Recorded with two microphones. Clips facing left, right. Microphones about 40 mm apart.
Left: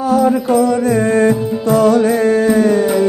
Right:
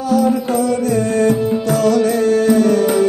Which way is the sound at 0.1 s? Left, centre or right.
Left.